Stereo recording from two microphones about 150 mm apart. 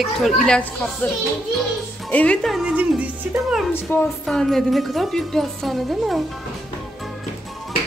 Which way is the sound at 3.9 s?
15° left (ahead or behind).